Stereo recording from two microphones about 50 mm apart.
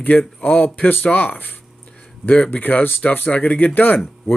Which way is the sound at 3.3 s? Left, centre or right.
Left.